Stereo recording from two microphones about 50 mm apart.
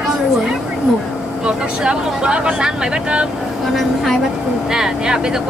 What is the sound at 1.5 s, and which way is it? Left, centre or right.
Speech, centre.